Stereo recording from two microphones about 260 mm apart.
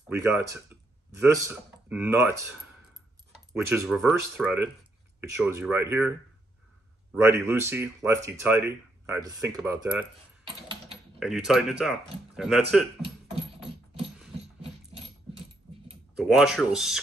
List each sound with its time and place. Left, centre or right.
0.1 s speech: centre
3.5 s speech: centre
11.1 s speech: centre
14.6 s keys jangling: right
16.2 s speech: centre